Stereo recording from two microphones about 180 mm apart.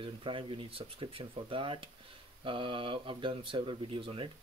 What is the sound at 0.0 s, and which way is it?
Speech, 30° right (ahead or behind).